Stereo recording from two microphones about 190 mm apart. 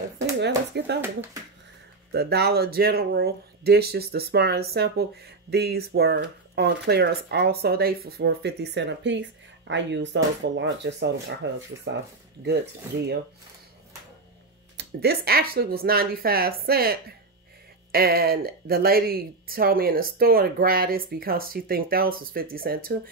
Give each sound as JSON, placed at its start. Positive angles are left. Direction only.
{"t": 0.7, "sound": "speech", "side_deg": -65}
{"t": 2.1, "sound": "speech", "side_deg": -60}
{"t": 14.8, "sound": "a woman's voice", "side_deg": -55}